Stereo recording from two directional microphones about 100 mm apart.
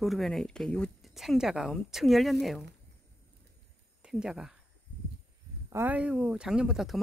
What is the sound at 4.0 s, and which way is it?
Speech, 5° right (ahead or behind).